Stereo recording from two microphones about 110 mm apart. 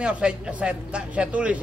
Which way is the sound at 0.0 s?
10° right (ahead or behind).